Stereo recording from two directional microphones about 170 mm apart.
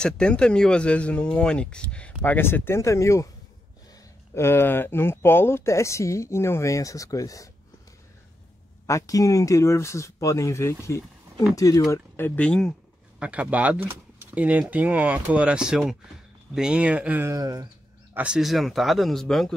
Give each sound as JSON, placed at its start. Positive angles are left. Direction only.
{"t": 0.0, "sound": "speech", "side_deg": 5}
{"t": 4.3, "sound": "speech", "side_deg": 15}
{"t": 8.8, "sound": "speech", "side_deg": 20}
{"t": 13.2, "sound": "speech", "side_deg": -10}
{"t": 18.1, "sound": "speech", "side_deg": -5}